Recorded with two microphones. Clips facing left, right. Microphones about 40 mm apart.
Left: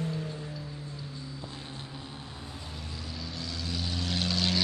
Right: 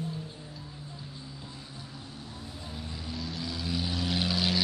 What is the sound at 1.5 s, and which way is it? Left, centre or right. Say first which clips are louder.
Vehicle: left 3 dB; left.